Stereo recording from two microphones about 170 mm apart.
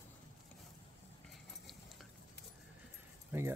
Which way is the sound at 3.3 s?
10° right (ahead or behind).